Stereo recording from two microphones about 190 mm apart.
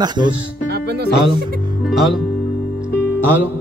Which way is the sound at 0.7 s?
60° right (ahead or behind).